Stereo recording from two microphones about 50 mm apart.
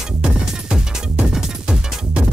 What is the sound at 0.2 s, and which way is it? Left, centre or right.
Music, centre.